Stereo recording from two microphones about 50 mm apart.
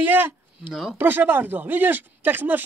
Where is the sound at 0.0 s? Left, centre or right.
Right.